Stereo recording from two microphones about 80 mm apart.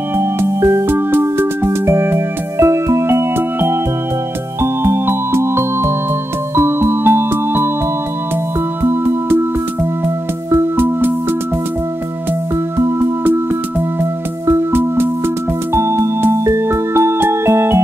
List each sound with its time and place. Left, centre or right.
0.1 s music: right
8.8 s music: right
10.8 s music: right
13.2 s music: right